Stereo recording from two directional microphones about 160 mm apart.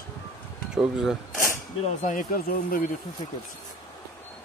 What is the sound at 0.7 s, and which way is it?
Speech, 5° right (ahead or behind).